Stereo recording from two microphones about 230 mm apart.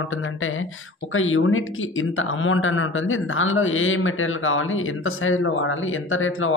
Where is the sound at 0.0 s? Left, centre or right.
Left.